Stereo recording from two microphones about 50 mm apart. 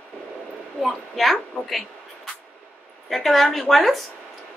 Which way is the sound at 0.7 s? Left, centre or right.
Centre.